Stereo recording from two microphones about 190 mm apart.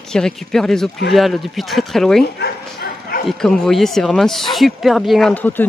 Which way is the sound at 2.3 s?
55° left (ahead or behind).